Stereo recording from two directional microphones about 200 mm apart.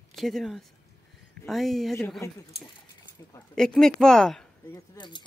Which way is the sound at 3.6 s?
Centre (ahead or behind).